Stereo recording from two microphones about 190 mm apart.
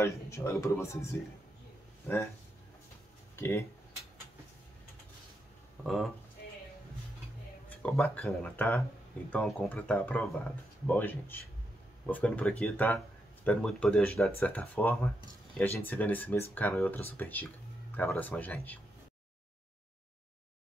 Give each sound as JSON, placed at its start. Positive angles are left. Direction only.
{"t": 0.0, "sound": "speech", "side_deg": 15}
{"t": 3.3, "sound": "speech", "side_deg": 15}
{"t": 5.9, "sound": "speech", "side_deg": 0}
{"t": 7.7, "sound": "speech", "side_deg": 5}